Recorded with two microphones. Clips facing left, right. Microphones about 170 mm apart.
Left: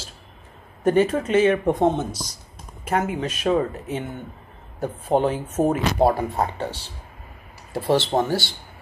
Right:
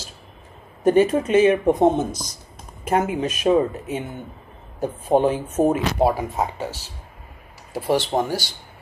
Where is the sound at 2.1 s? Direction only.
45° right (ahead or behind).